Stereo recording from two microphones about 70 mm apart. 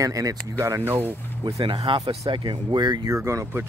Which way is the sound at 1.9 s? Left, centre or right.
Right.